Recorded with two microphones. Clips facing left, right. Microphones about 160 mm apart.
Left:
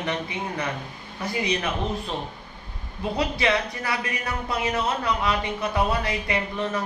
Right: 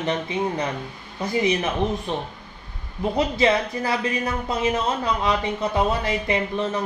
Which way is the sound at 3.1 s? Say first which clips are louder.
Right 4 dB; 25° right (ahead or behind).